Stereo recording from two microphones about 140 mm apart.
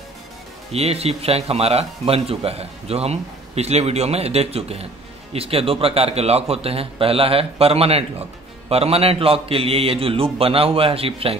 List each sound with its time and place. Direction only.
0.7 s speech: 45° right (ahead or behind)